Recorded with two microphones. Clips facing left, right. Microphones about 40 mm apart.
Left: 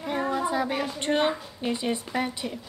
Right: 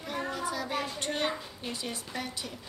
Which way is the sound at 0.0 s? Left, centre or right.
Left.